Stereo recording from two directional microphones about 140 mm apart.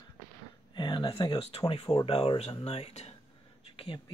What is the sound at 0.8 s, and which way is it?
Speech, 35° left (ahead or behind).